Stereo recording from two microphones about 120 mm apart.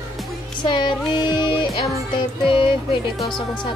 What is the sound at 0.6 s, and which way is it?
Music, 40° left (ahead or behind).